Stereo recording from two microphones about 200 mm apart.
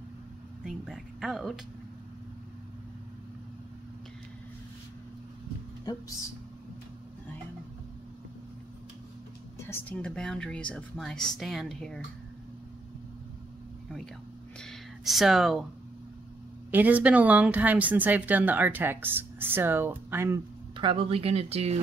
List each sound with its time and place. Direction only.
0.7 s speech: centre (ahead or behind)
9.7 s speech: 10° left (ahead or behind)
14.6 s gasp: centre (ahead or behind)
16.7 s speech: 5° right (ahead or behind)
20.7 s speech: 25° right (ahead or behind)